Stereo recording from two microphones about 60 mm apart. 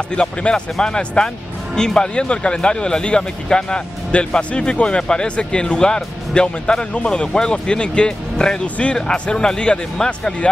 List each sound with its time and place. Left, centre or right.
0.1 s speech: centre